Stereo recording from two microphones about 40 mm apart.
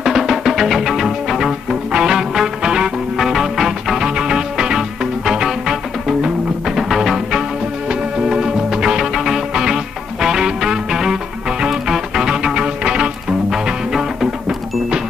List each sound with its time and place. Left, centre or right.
0.0 s music: centre
3.3 s music: centre
13.5 s music: centre